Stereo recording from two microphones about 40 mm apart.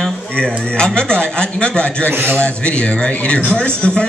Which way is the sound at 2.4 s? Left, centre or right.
Left.